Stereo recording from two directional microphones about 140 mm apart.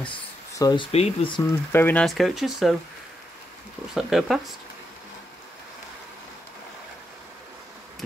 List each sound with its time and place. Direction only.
0.6 s speech: 30° left (ahead or behind)
0.9 s speech: 40° left (ahead or behind)
1.7 s speech: 15° left (ahead or behind)
2.0 s speech: centre (ahead or behind)
3.9 s speech: centre (ahead or behind)